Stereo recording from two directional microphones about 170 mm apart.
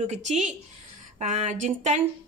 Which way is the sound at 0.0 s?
40° right (ahead or behind).